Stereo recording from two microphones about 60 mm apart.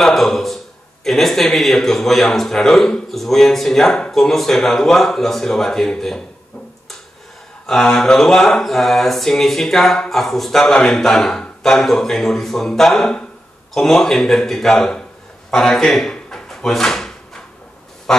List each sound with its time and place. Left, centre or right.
0.0 s a sound: centre
1.0 s a man's voice: centre
7.6 s mantra: centre
15.5 s drawer open or close: centre